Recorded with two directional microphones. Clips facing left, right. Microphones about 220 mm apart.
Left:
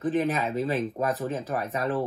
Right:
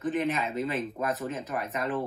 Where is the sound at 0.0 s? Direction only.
30° left (ahead or behind).